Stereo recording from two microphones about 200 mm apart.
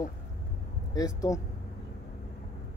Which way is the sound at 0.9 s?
15° left (ahead or behind).